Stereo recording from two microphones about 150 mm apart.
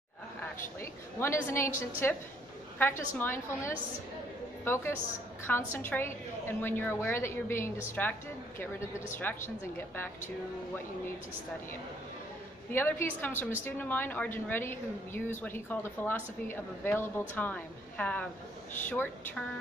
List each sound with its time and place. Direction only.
0.7 s a woman's voice: 15° left (ahead or behind)
12.7 s a woman's voice: 10° left (ahead or behind)